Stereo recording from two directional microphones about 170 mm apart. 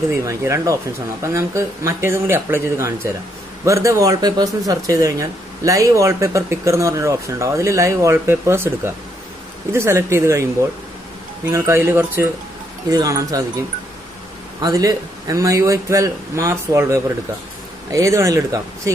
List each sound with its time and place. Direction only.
0.1 s a man's voice: 15° right (ahead or behind)
14.6 s a man's voice: 20° right (ahead or behind)